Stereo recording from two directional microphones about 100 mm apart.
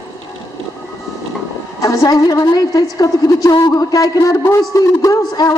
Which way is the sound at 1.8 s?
35° left (ahead or behind).